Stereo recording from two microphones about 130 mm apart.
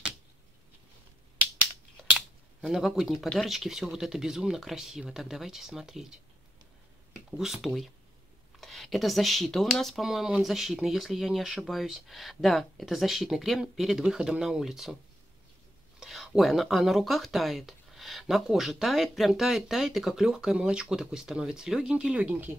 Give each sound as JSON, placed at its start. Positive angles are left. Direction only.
{"t": 1.6, "sound": "speech", "side_deg": -10}
{"t": 7.2, "sound": "speech", "side_deg": -5}
{"t": 16.0, "sound": "speech", "side_deg": 0}